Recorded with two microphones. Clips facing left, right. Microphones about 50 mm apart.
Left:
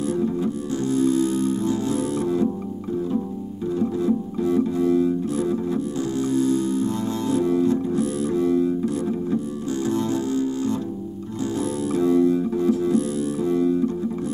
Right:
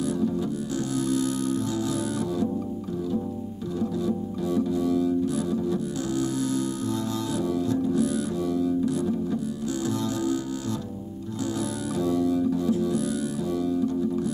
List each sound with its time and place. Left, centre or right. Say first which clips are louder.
0.0 s music: left 3 dB; left
4.0 s music: left 5 dB; left